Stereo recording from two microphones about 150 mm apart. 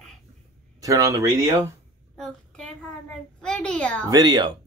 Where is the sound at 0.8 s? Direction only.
20° right (ahead or behind).